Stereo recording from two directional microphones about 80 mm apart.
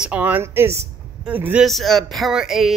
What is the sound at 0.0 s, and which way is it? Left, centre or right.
Speech, centre.